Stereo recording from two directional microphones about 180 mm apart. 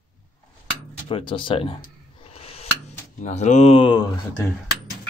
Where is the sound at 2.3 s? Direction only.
35° left (ahead or behind).